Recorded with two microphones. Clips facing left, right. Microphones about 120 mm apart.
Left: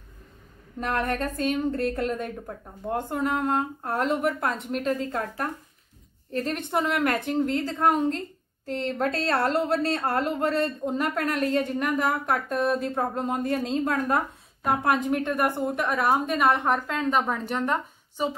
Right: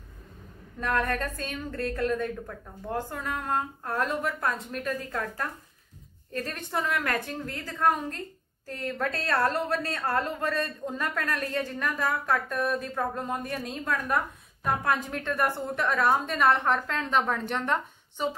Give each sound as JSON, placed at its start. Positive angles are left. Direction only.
{"t": 0.7, "sound": "a woman's voice", "side_deg": 25}